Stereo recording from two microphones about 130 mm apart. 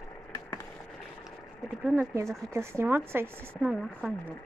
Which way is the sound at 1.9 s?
20° right (ahead or behind).